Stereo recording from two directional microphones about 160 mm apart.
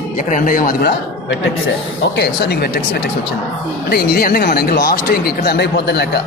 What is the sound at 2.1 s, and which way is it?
Speech, 90° left.